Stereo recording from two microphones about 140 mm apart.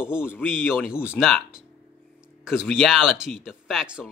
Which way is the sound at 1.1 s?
Centre (ahead or behind).